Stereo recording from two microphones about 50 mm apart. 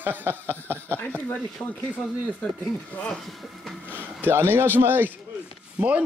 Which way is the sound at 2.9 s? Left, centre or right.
Left.